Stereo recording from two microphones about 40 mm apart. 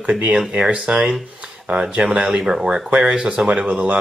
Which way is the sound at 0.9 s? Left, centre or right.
Right.